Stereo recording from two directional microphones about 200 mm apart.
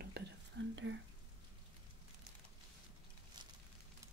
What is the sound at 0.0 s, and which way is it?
Whispering, 60° right (ahead or behind).